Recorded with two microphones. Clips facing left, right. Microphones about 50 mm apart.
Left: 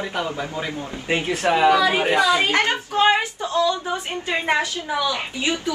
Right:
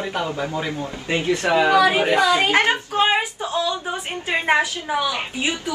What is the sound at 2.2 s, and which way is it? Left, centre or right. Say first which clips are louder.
A woman's voice: right 2 dB; right.